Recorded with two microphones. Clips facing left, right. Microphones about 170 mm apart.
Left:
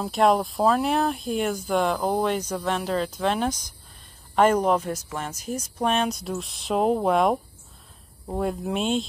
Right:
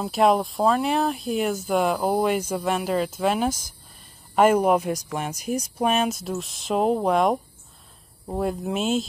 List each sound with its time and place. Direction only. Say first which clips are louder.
0.0 s speech: right 1 dB; centre (ahead or behind)